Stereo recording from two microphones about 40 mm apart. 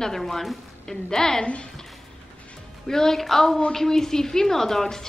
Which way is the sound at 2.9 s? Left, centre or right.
Centre.